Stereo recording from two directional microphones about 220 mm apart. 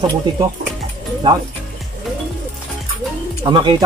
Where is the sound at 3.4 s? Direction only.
20° right (ahead or behind).